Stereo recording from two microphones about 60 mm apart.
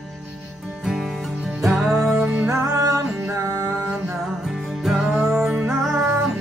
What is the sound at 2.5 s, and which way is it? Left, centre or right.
Music, right.